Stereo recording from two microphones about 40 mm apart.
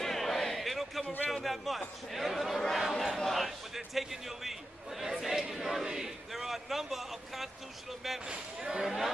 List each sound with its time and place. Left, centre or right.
0.0 s a sound: centre
1.3 s a man's voice: centre
8.3 s speech: right